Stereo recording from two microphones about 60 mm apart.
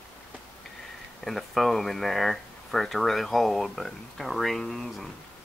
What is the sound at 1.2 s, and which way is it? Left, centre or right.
Speech, centre.